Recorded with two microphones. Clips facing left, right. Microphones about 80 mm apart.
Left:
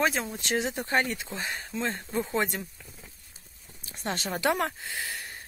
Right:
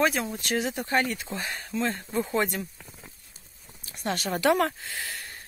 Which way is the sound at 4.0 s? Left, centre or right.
Left.